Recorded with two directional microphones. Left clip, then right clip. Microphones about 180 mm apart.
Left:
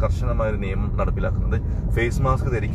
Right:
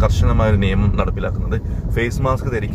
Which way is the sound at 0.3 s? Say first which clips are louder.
Right 6 dB; 20° right (ahead or behind).